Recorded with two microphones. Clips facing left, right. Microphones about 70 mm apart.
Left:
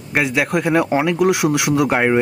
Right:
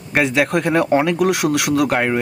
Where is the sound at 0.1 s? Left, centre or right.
Centre.